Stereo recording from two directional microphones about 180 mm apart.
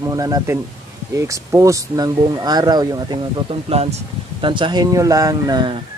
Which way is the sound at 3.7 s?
35° right (ahead or behind).